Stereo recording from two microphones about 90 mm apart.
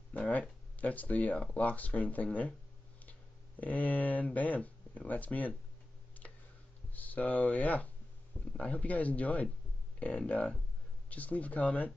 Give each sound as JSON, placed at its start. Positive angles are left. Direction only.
{"t": 0.1, "sound": "speech", "side_deg": 15}
{"t": 6.9, "sound": "speech", "side_deg": 20}